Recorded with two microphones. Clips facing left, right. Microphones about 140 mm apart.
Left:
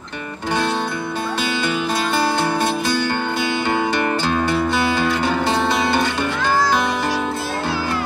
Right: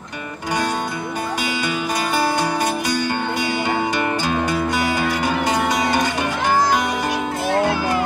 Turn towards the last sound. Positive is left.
turn(degrees=-20)  # may be behind; listen again after turning